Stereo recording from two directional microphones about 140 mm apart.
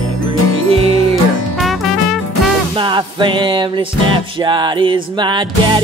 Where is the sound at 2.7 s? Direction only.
35° right (ahead or behind).